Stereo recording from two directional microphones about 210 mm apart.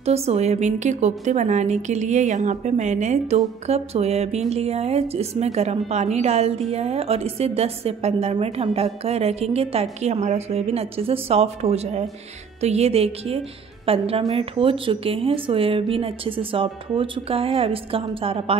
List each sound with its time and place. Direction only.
0.0 s a woman's voice: 30° right (ahead or behind)